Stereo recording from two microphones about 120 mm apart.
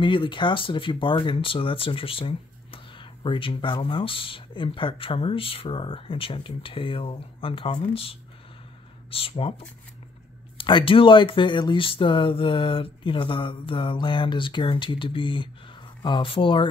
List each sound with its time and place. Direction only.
0.0 s speech: 45° left (ahead or behind)
10.6 s speech: 45° left (ahead or behind)